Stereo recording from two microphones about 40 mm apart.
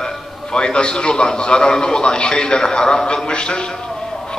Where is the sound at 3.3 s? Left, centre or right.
Left.